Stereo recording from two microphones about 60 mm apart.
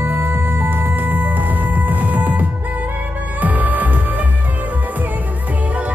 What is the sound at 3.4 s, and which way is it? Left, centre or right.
Music, right.